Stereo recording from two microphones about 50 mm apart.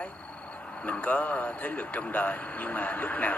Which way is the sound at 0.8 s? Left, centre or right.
Left.